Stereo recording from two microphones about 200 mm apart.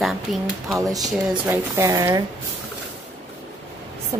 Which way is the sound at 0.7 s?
20° right (ahead or behind).